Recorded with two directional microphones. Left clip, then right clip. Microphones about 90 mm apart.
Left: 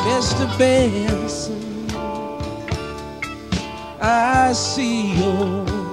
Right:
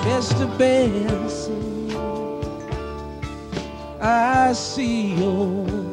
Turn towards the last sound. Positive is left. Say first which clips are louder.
# left 2 dB
turn(degrees=40)  # may be behind; listen again after turning